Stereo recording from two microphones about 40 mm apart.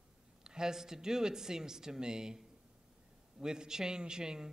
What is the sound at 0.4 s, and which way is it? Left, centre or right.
A man's voice, centre.